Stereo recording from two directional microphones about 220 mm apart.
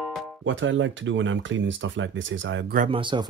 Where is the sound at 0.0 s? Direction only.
Centre (ahead or behind).